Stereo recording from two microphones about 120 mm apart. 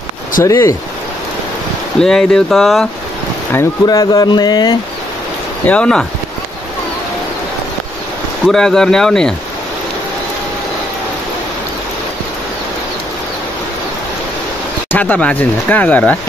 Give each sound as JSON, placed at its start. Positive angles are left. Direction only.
{"t": 0.4, "sound": "speech", "side_deg": 25}
{"t": 2.0, "sound": "speech", "side_deg": 5}
{"t": 3.8, "sound": "speech", "side_deg": 30}
{"t": 5.7, "sound": "speech", "side_deg": 10}
{"t": 8.5, "sound": "speech", "side_deg": 5}
{"t": 14.9, "sound": "speech", "side_deg": 15}